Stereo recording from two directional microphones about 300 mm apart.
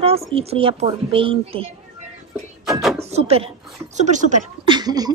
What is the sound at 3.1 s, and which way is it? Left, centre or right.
A woman's voice, centre.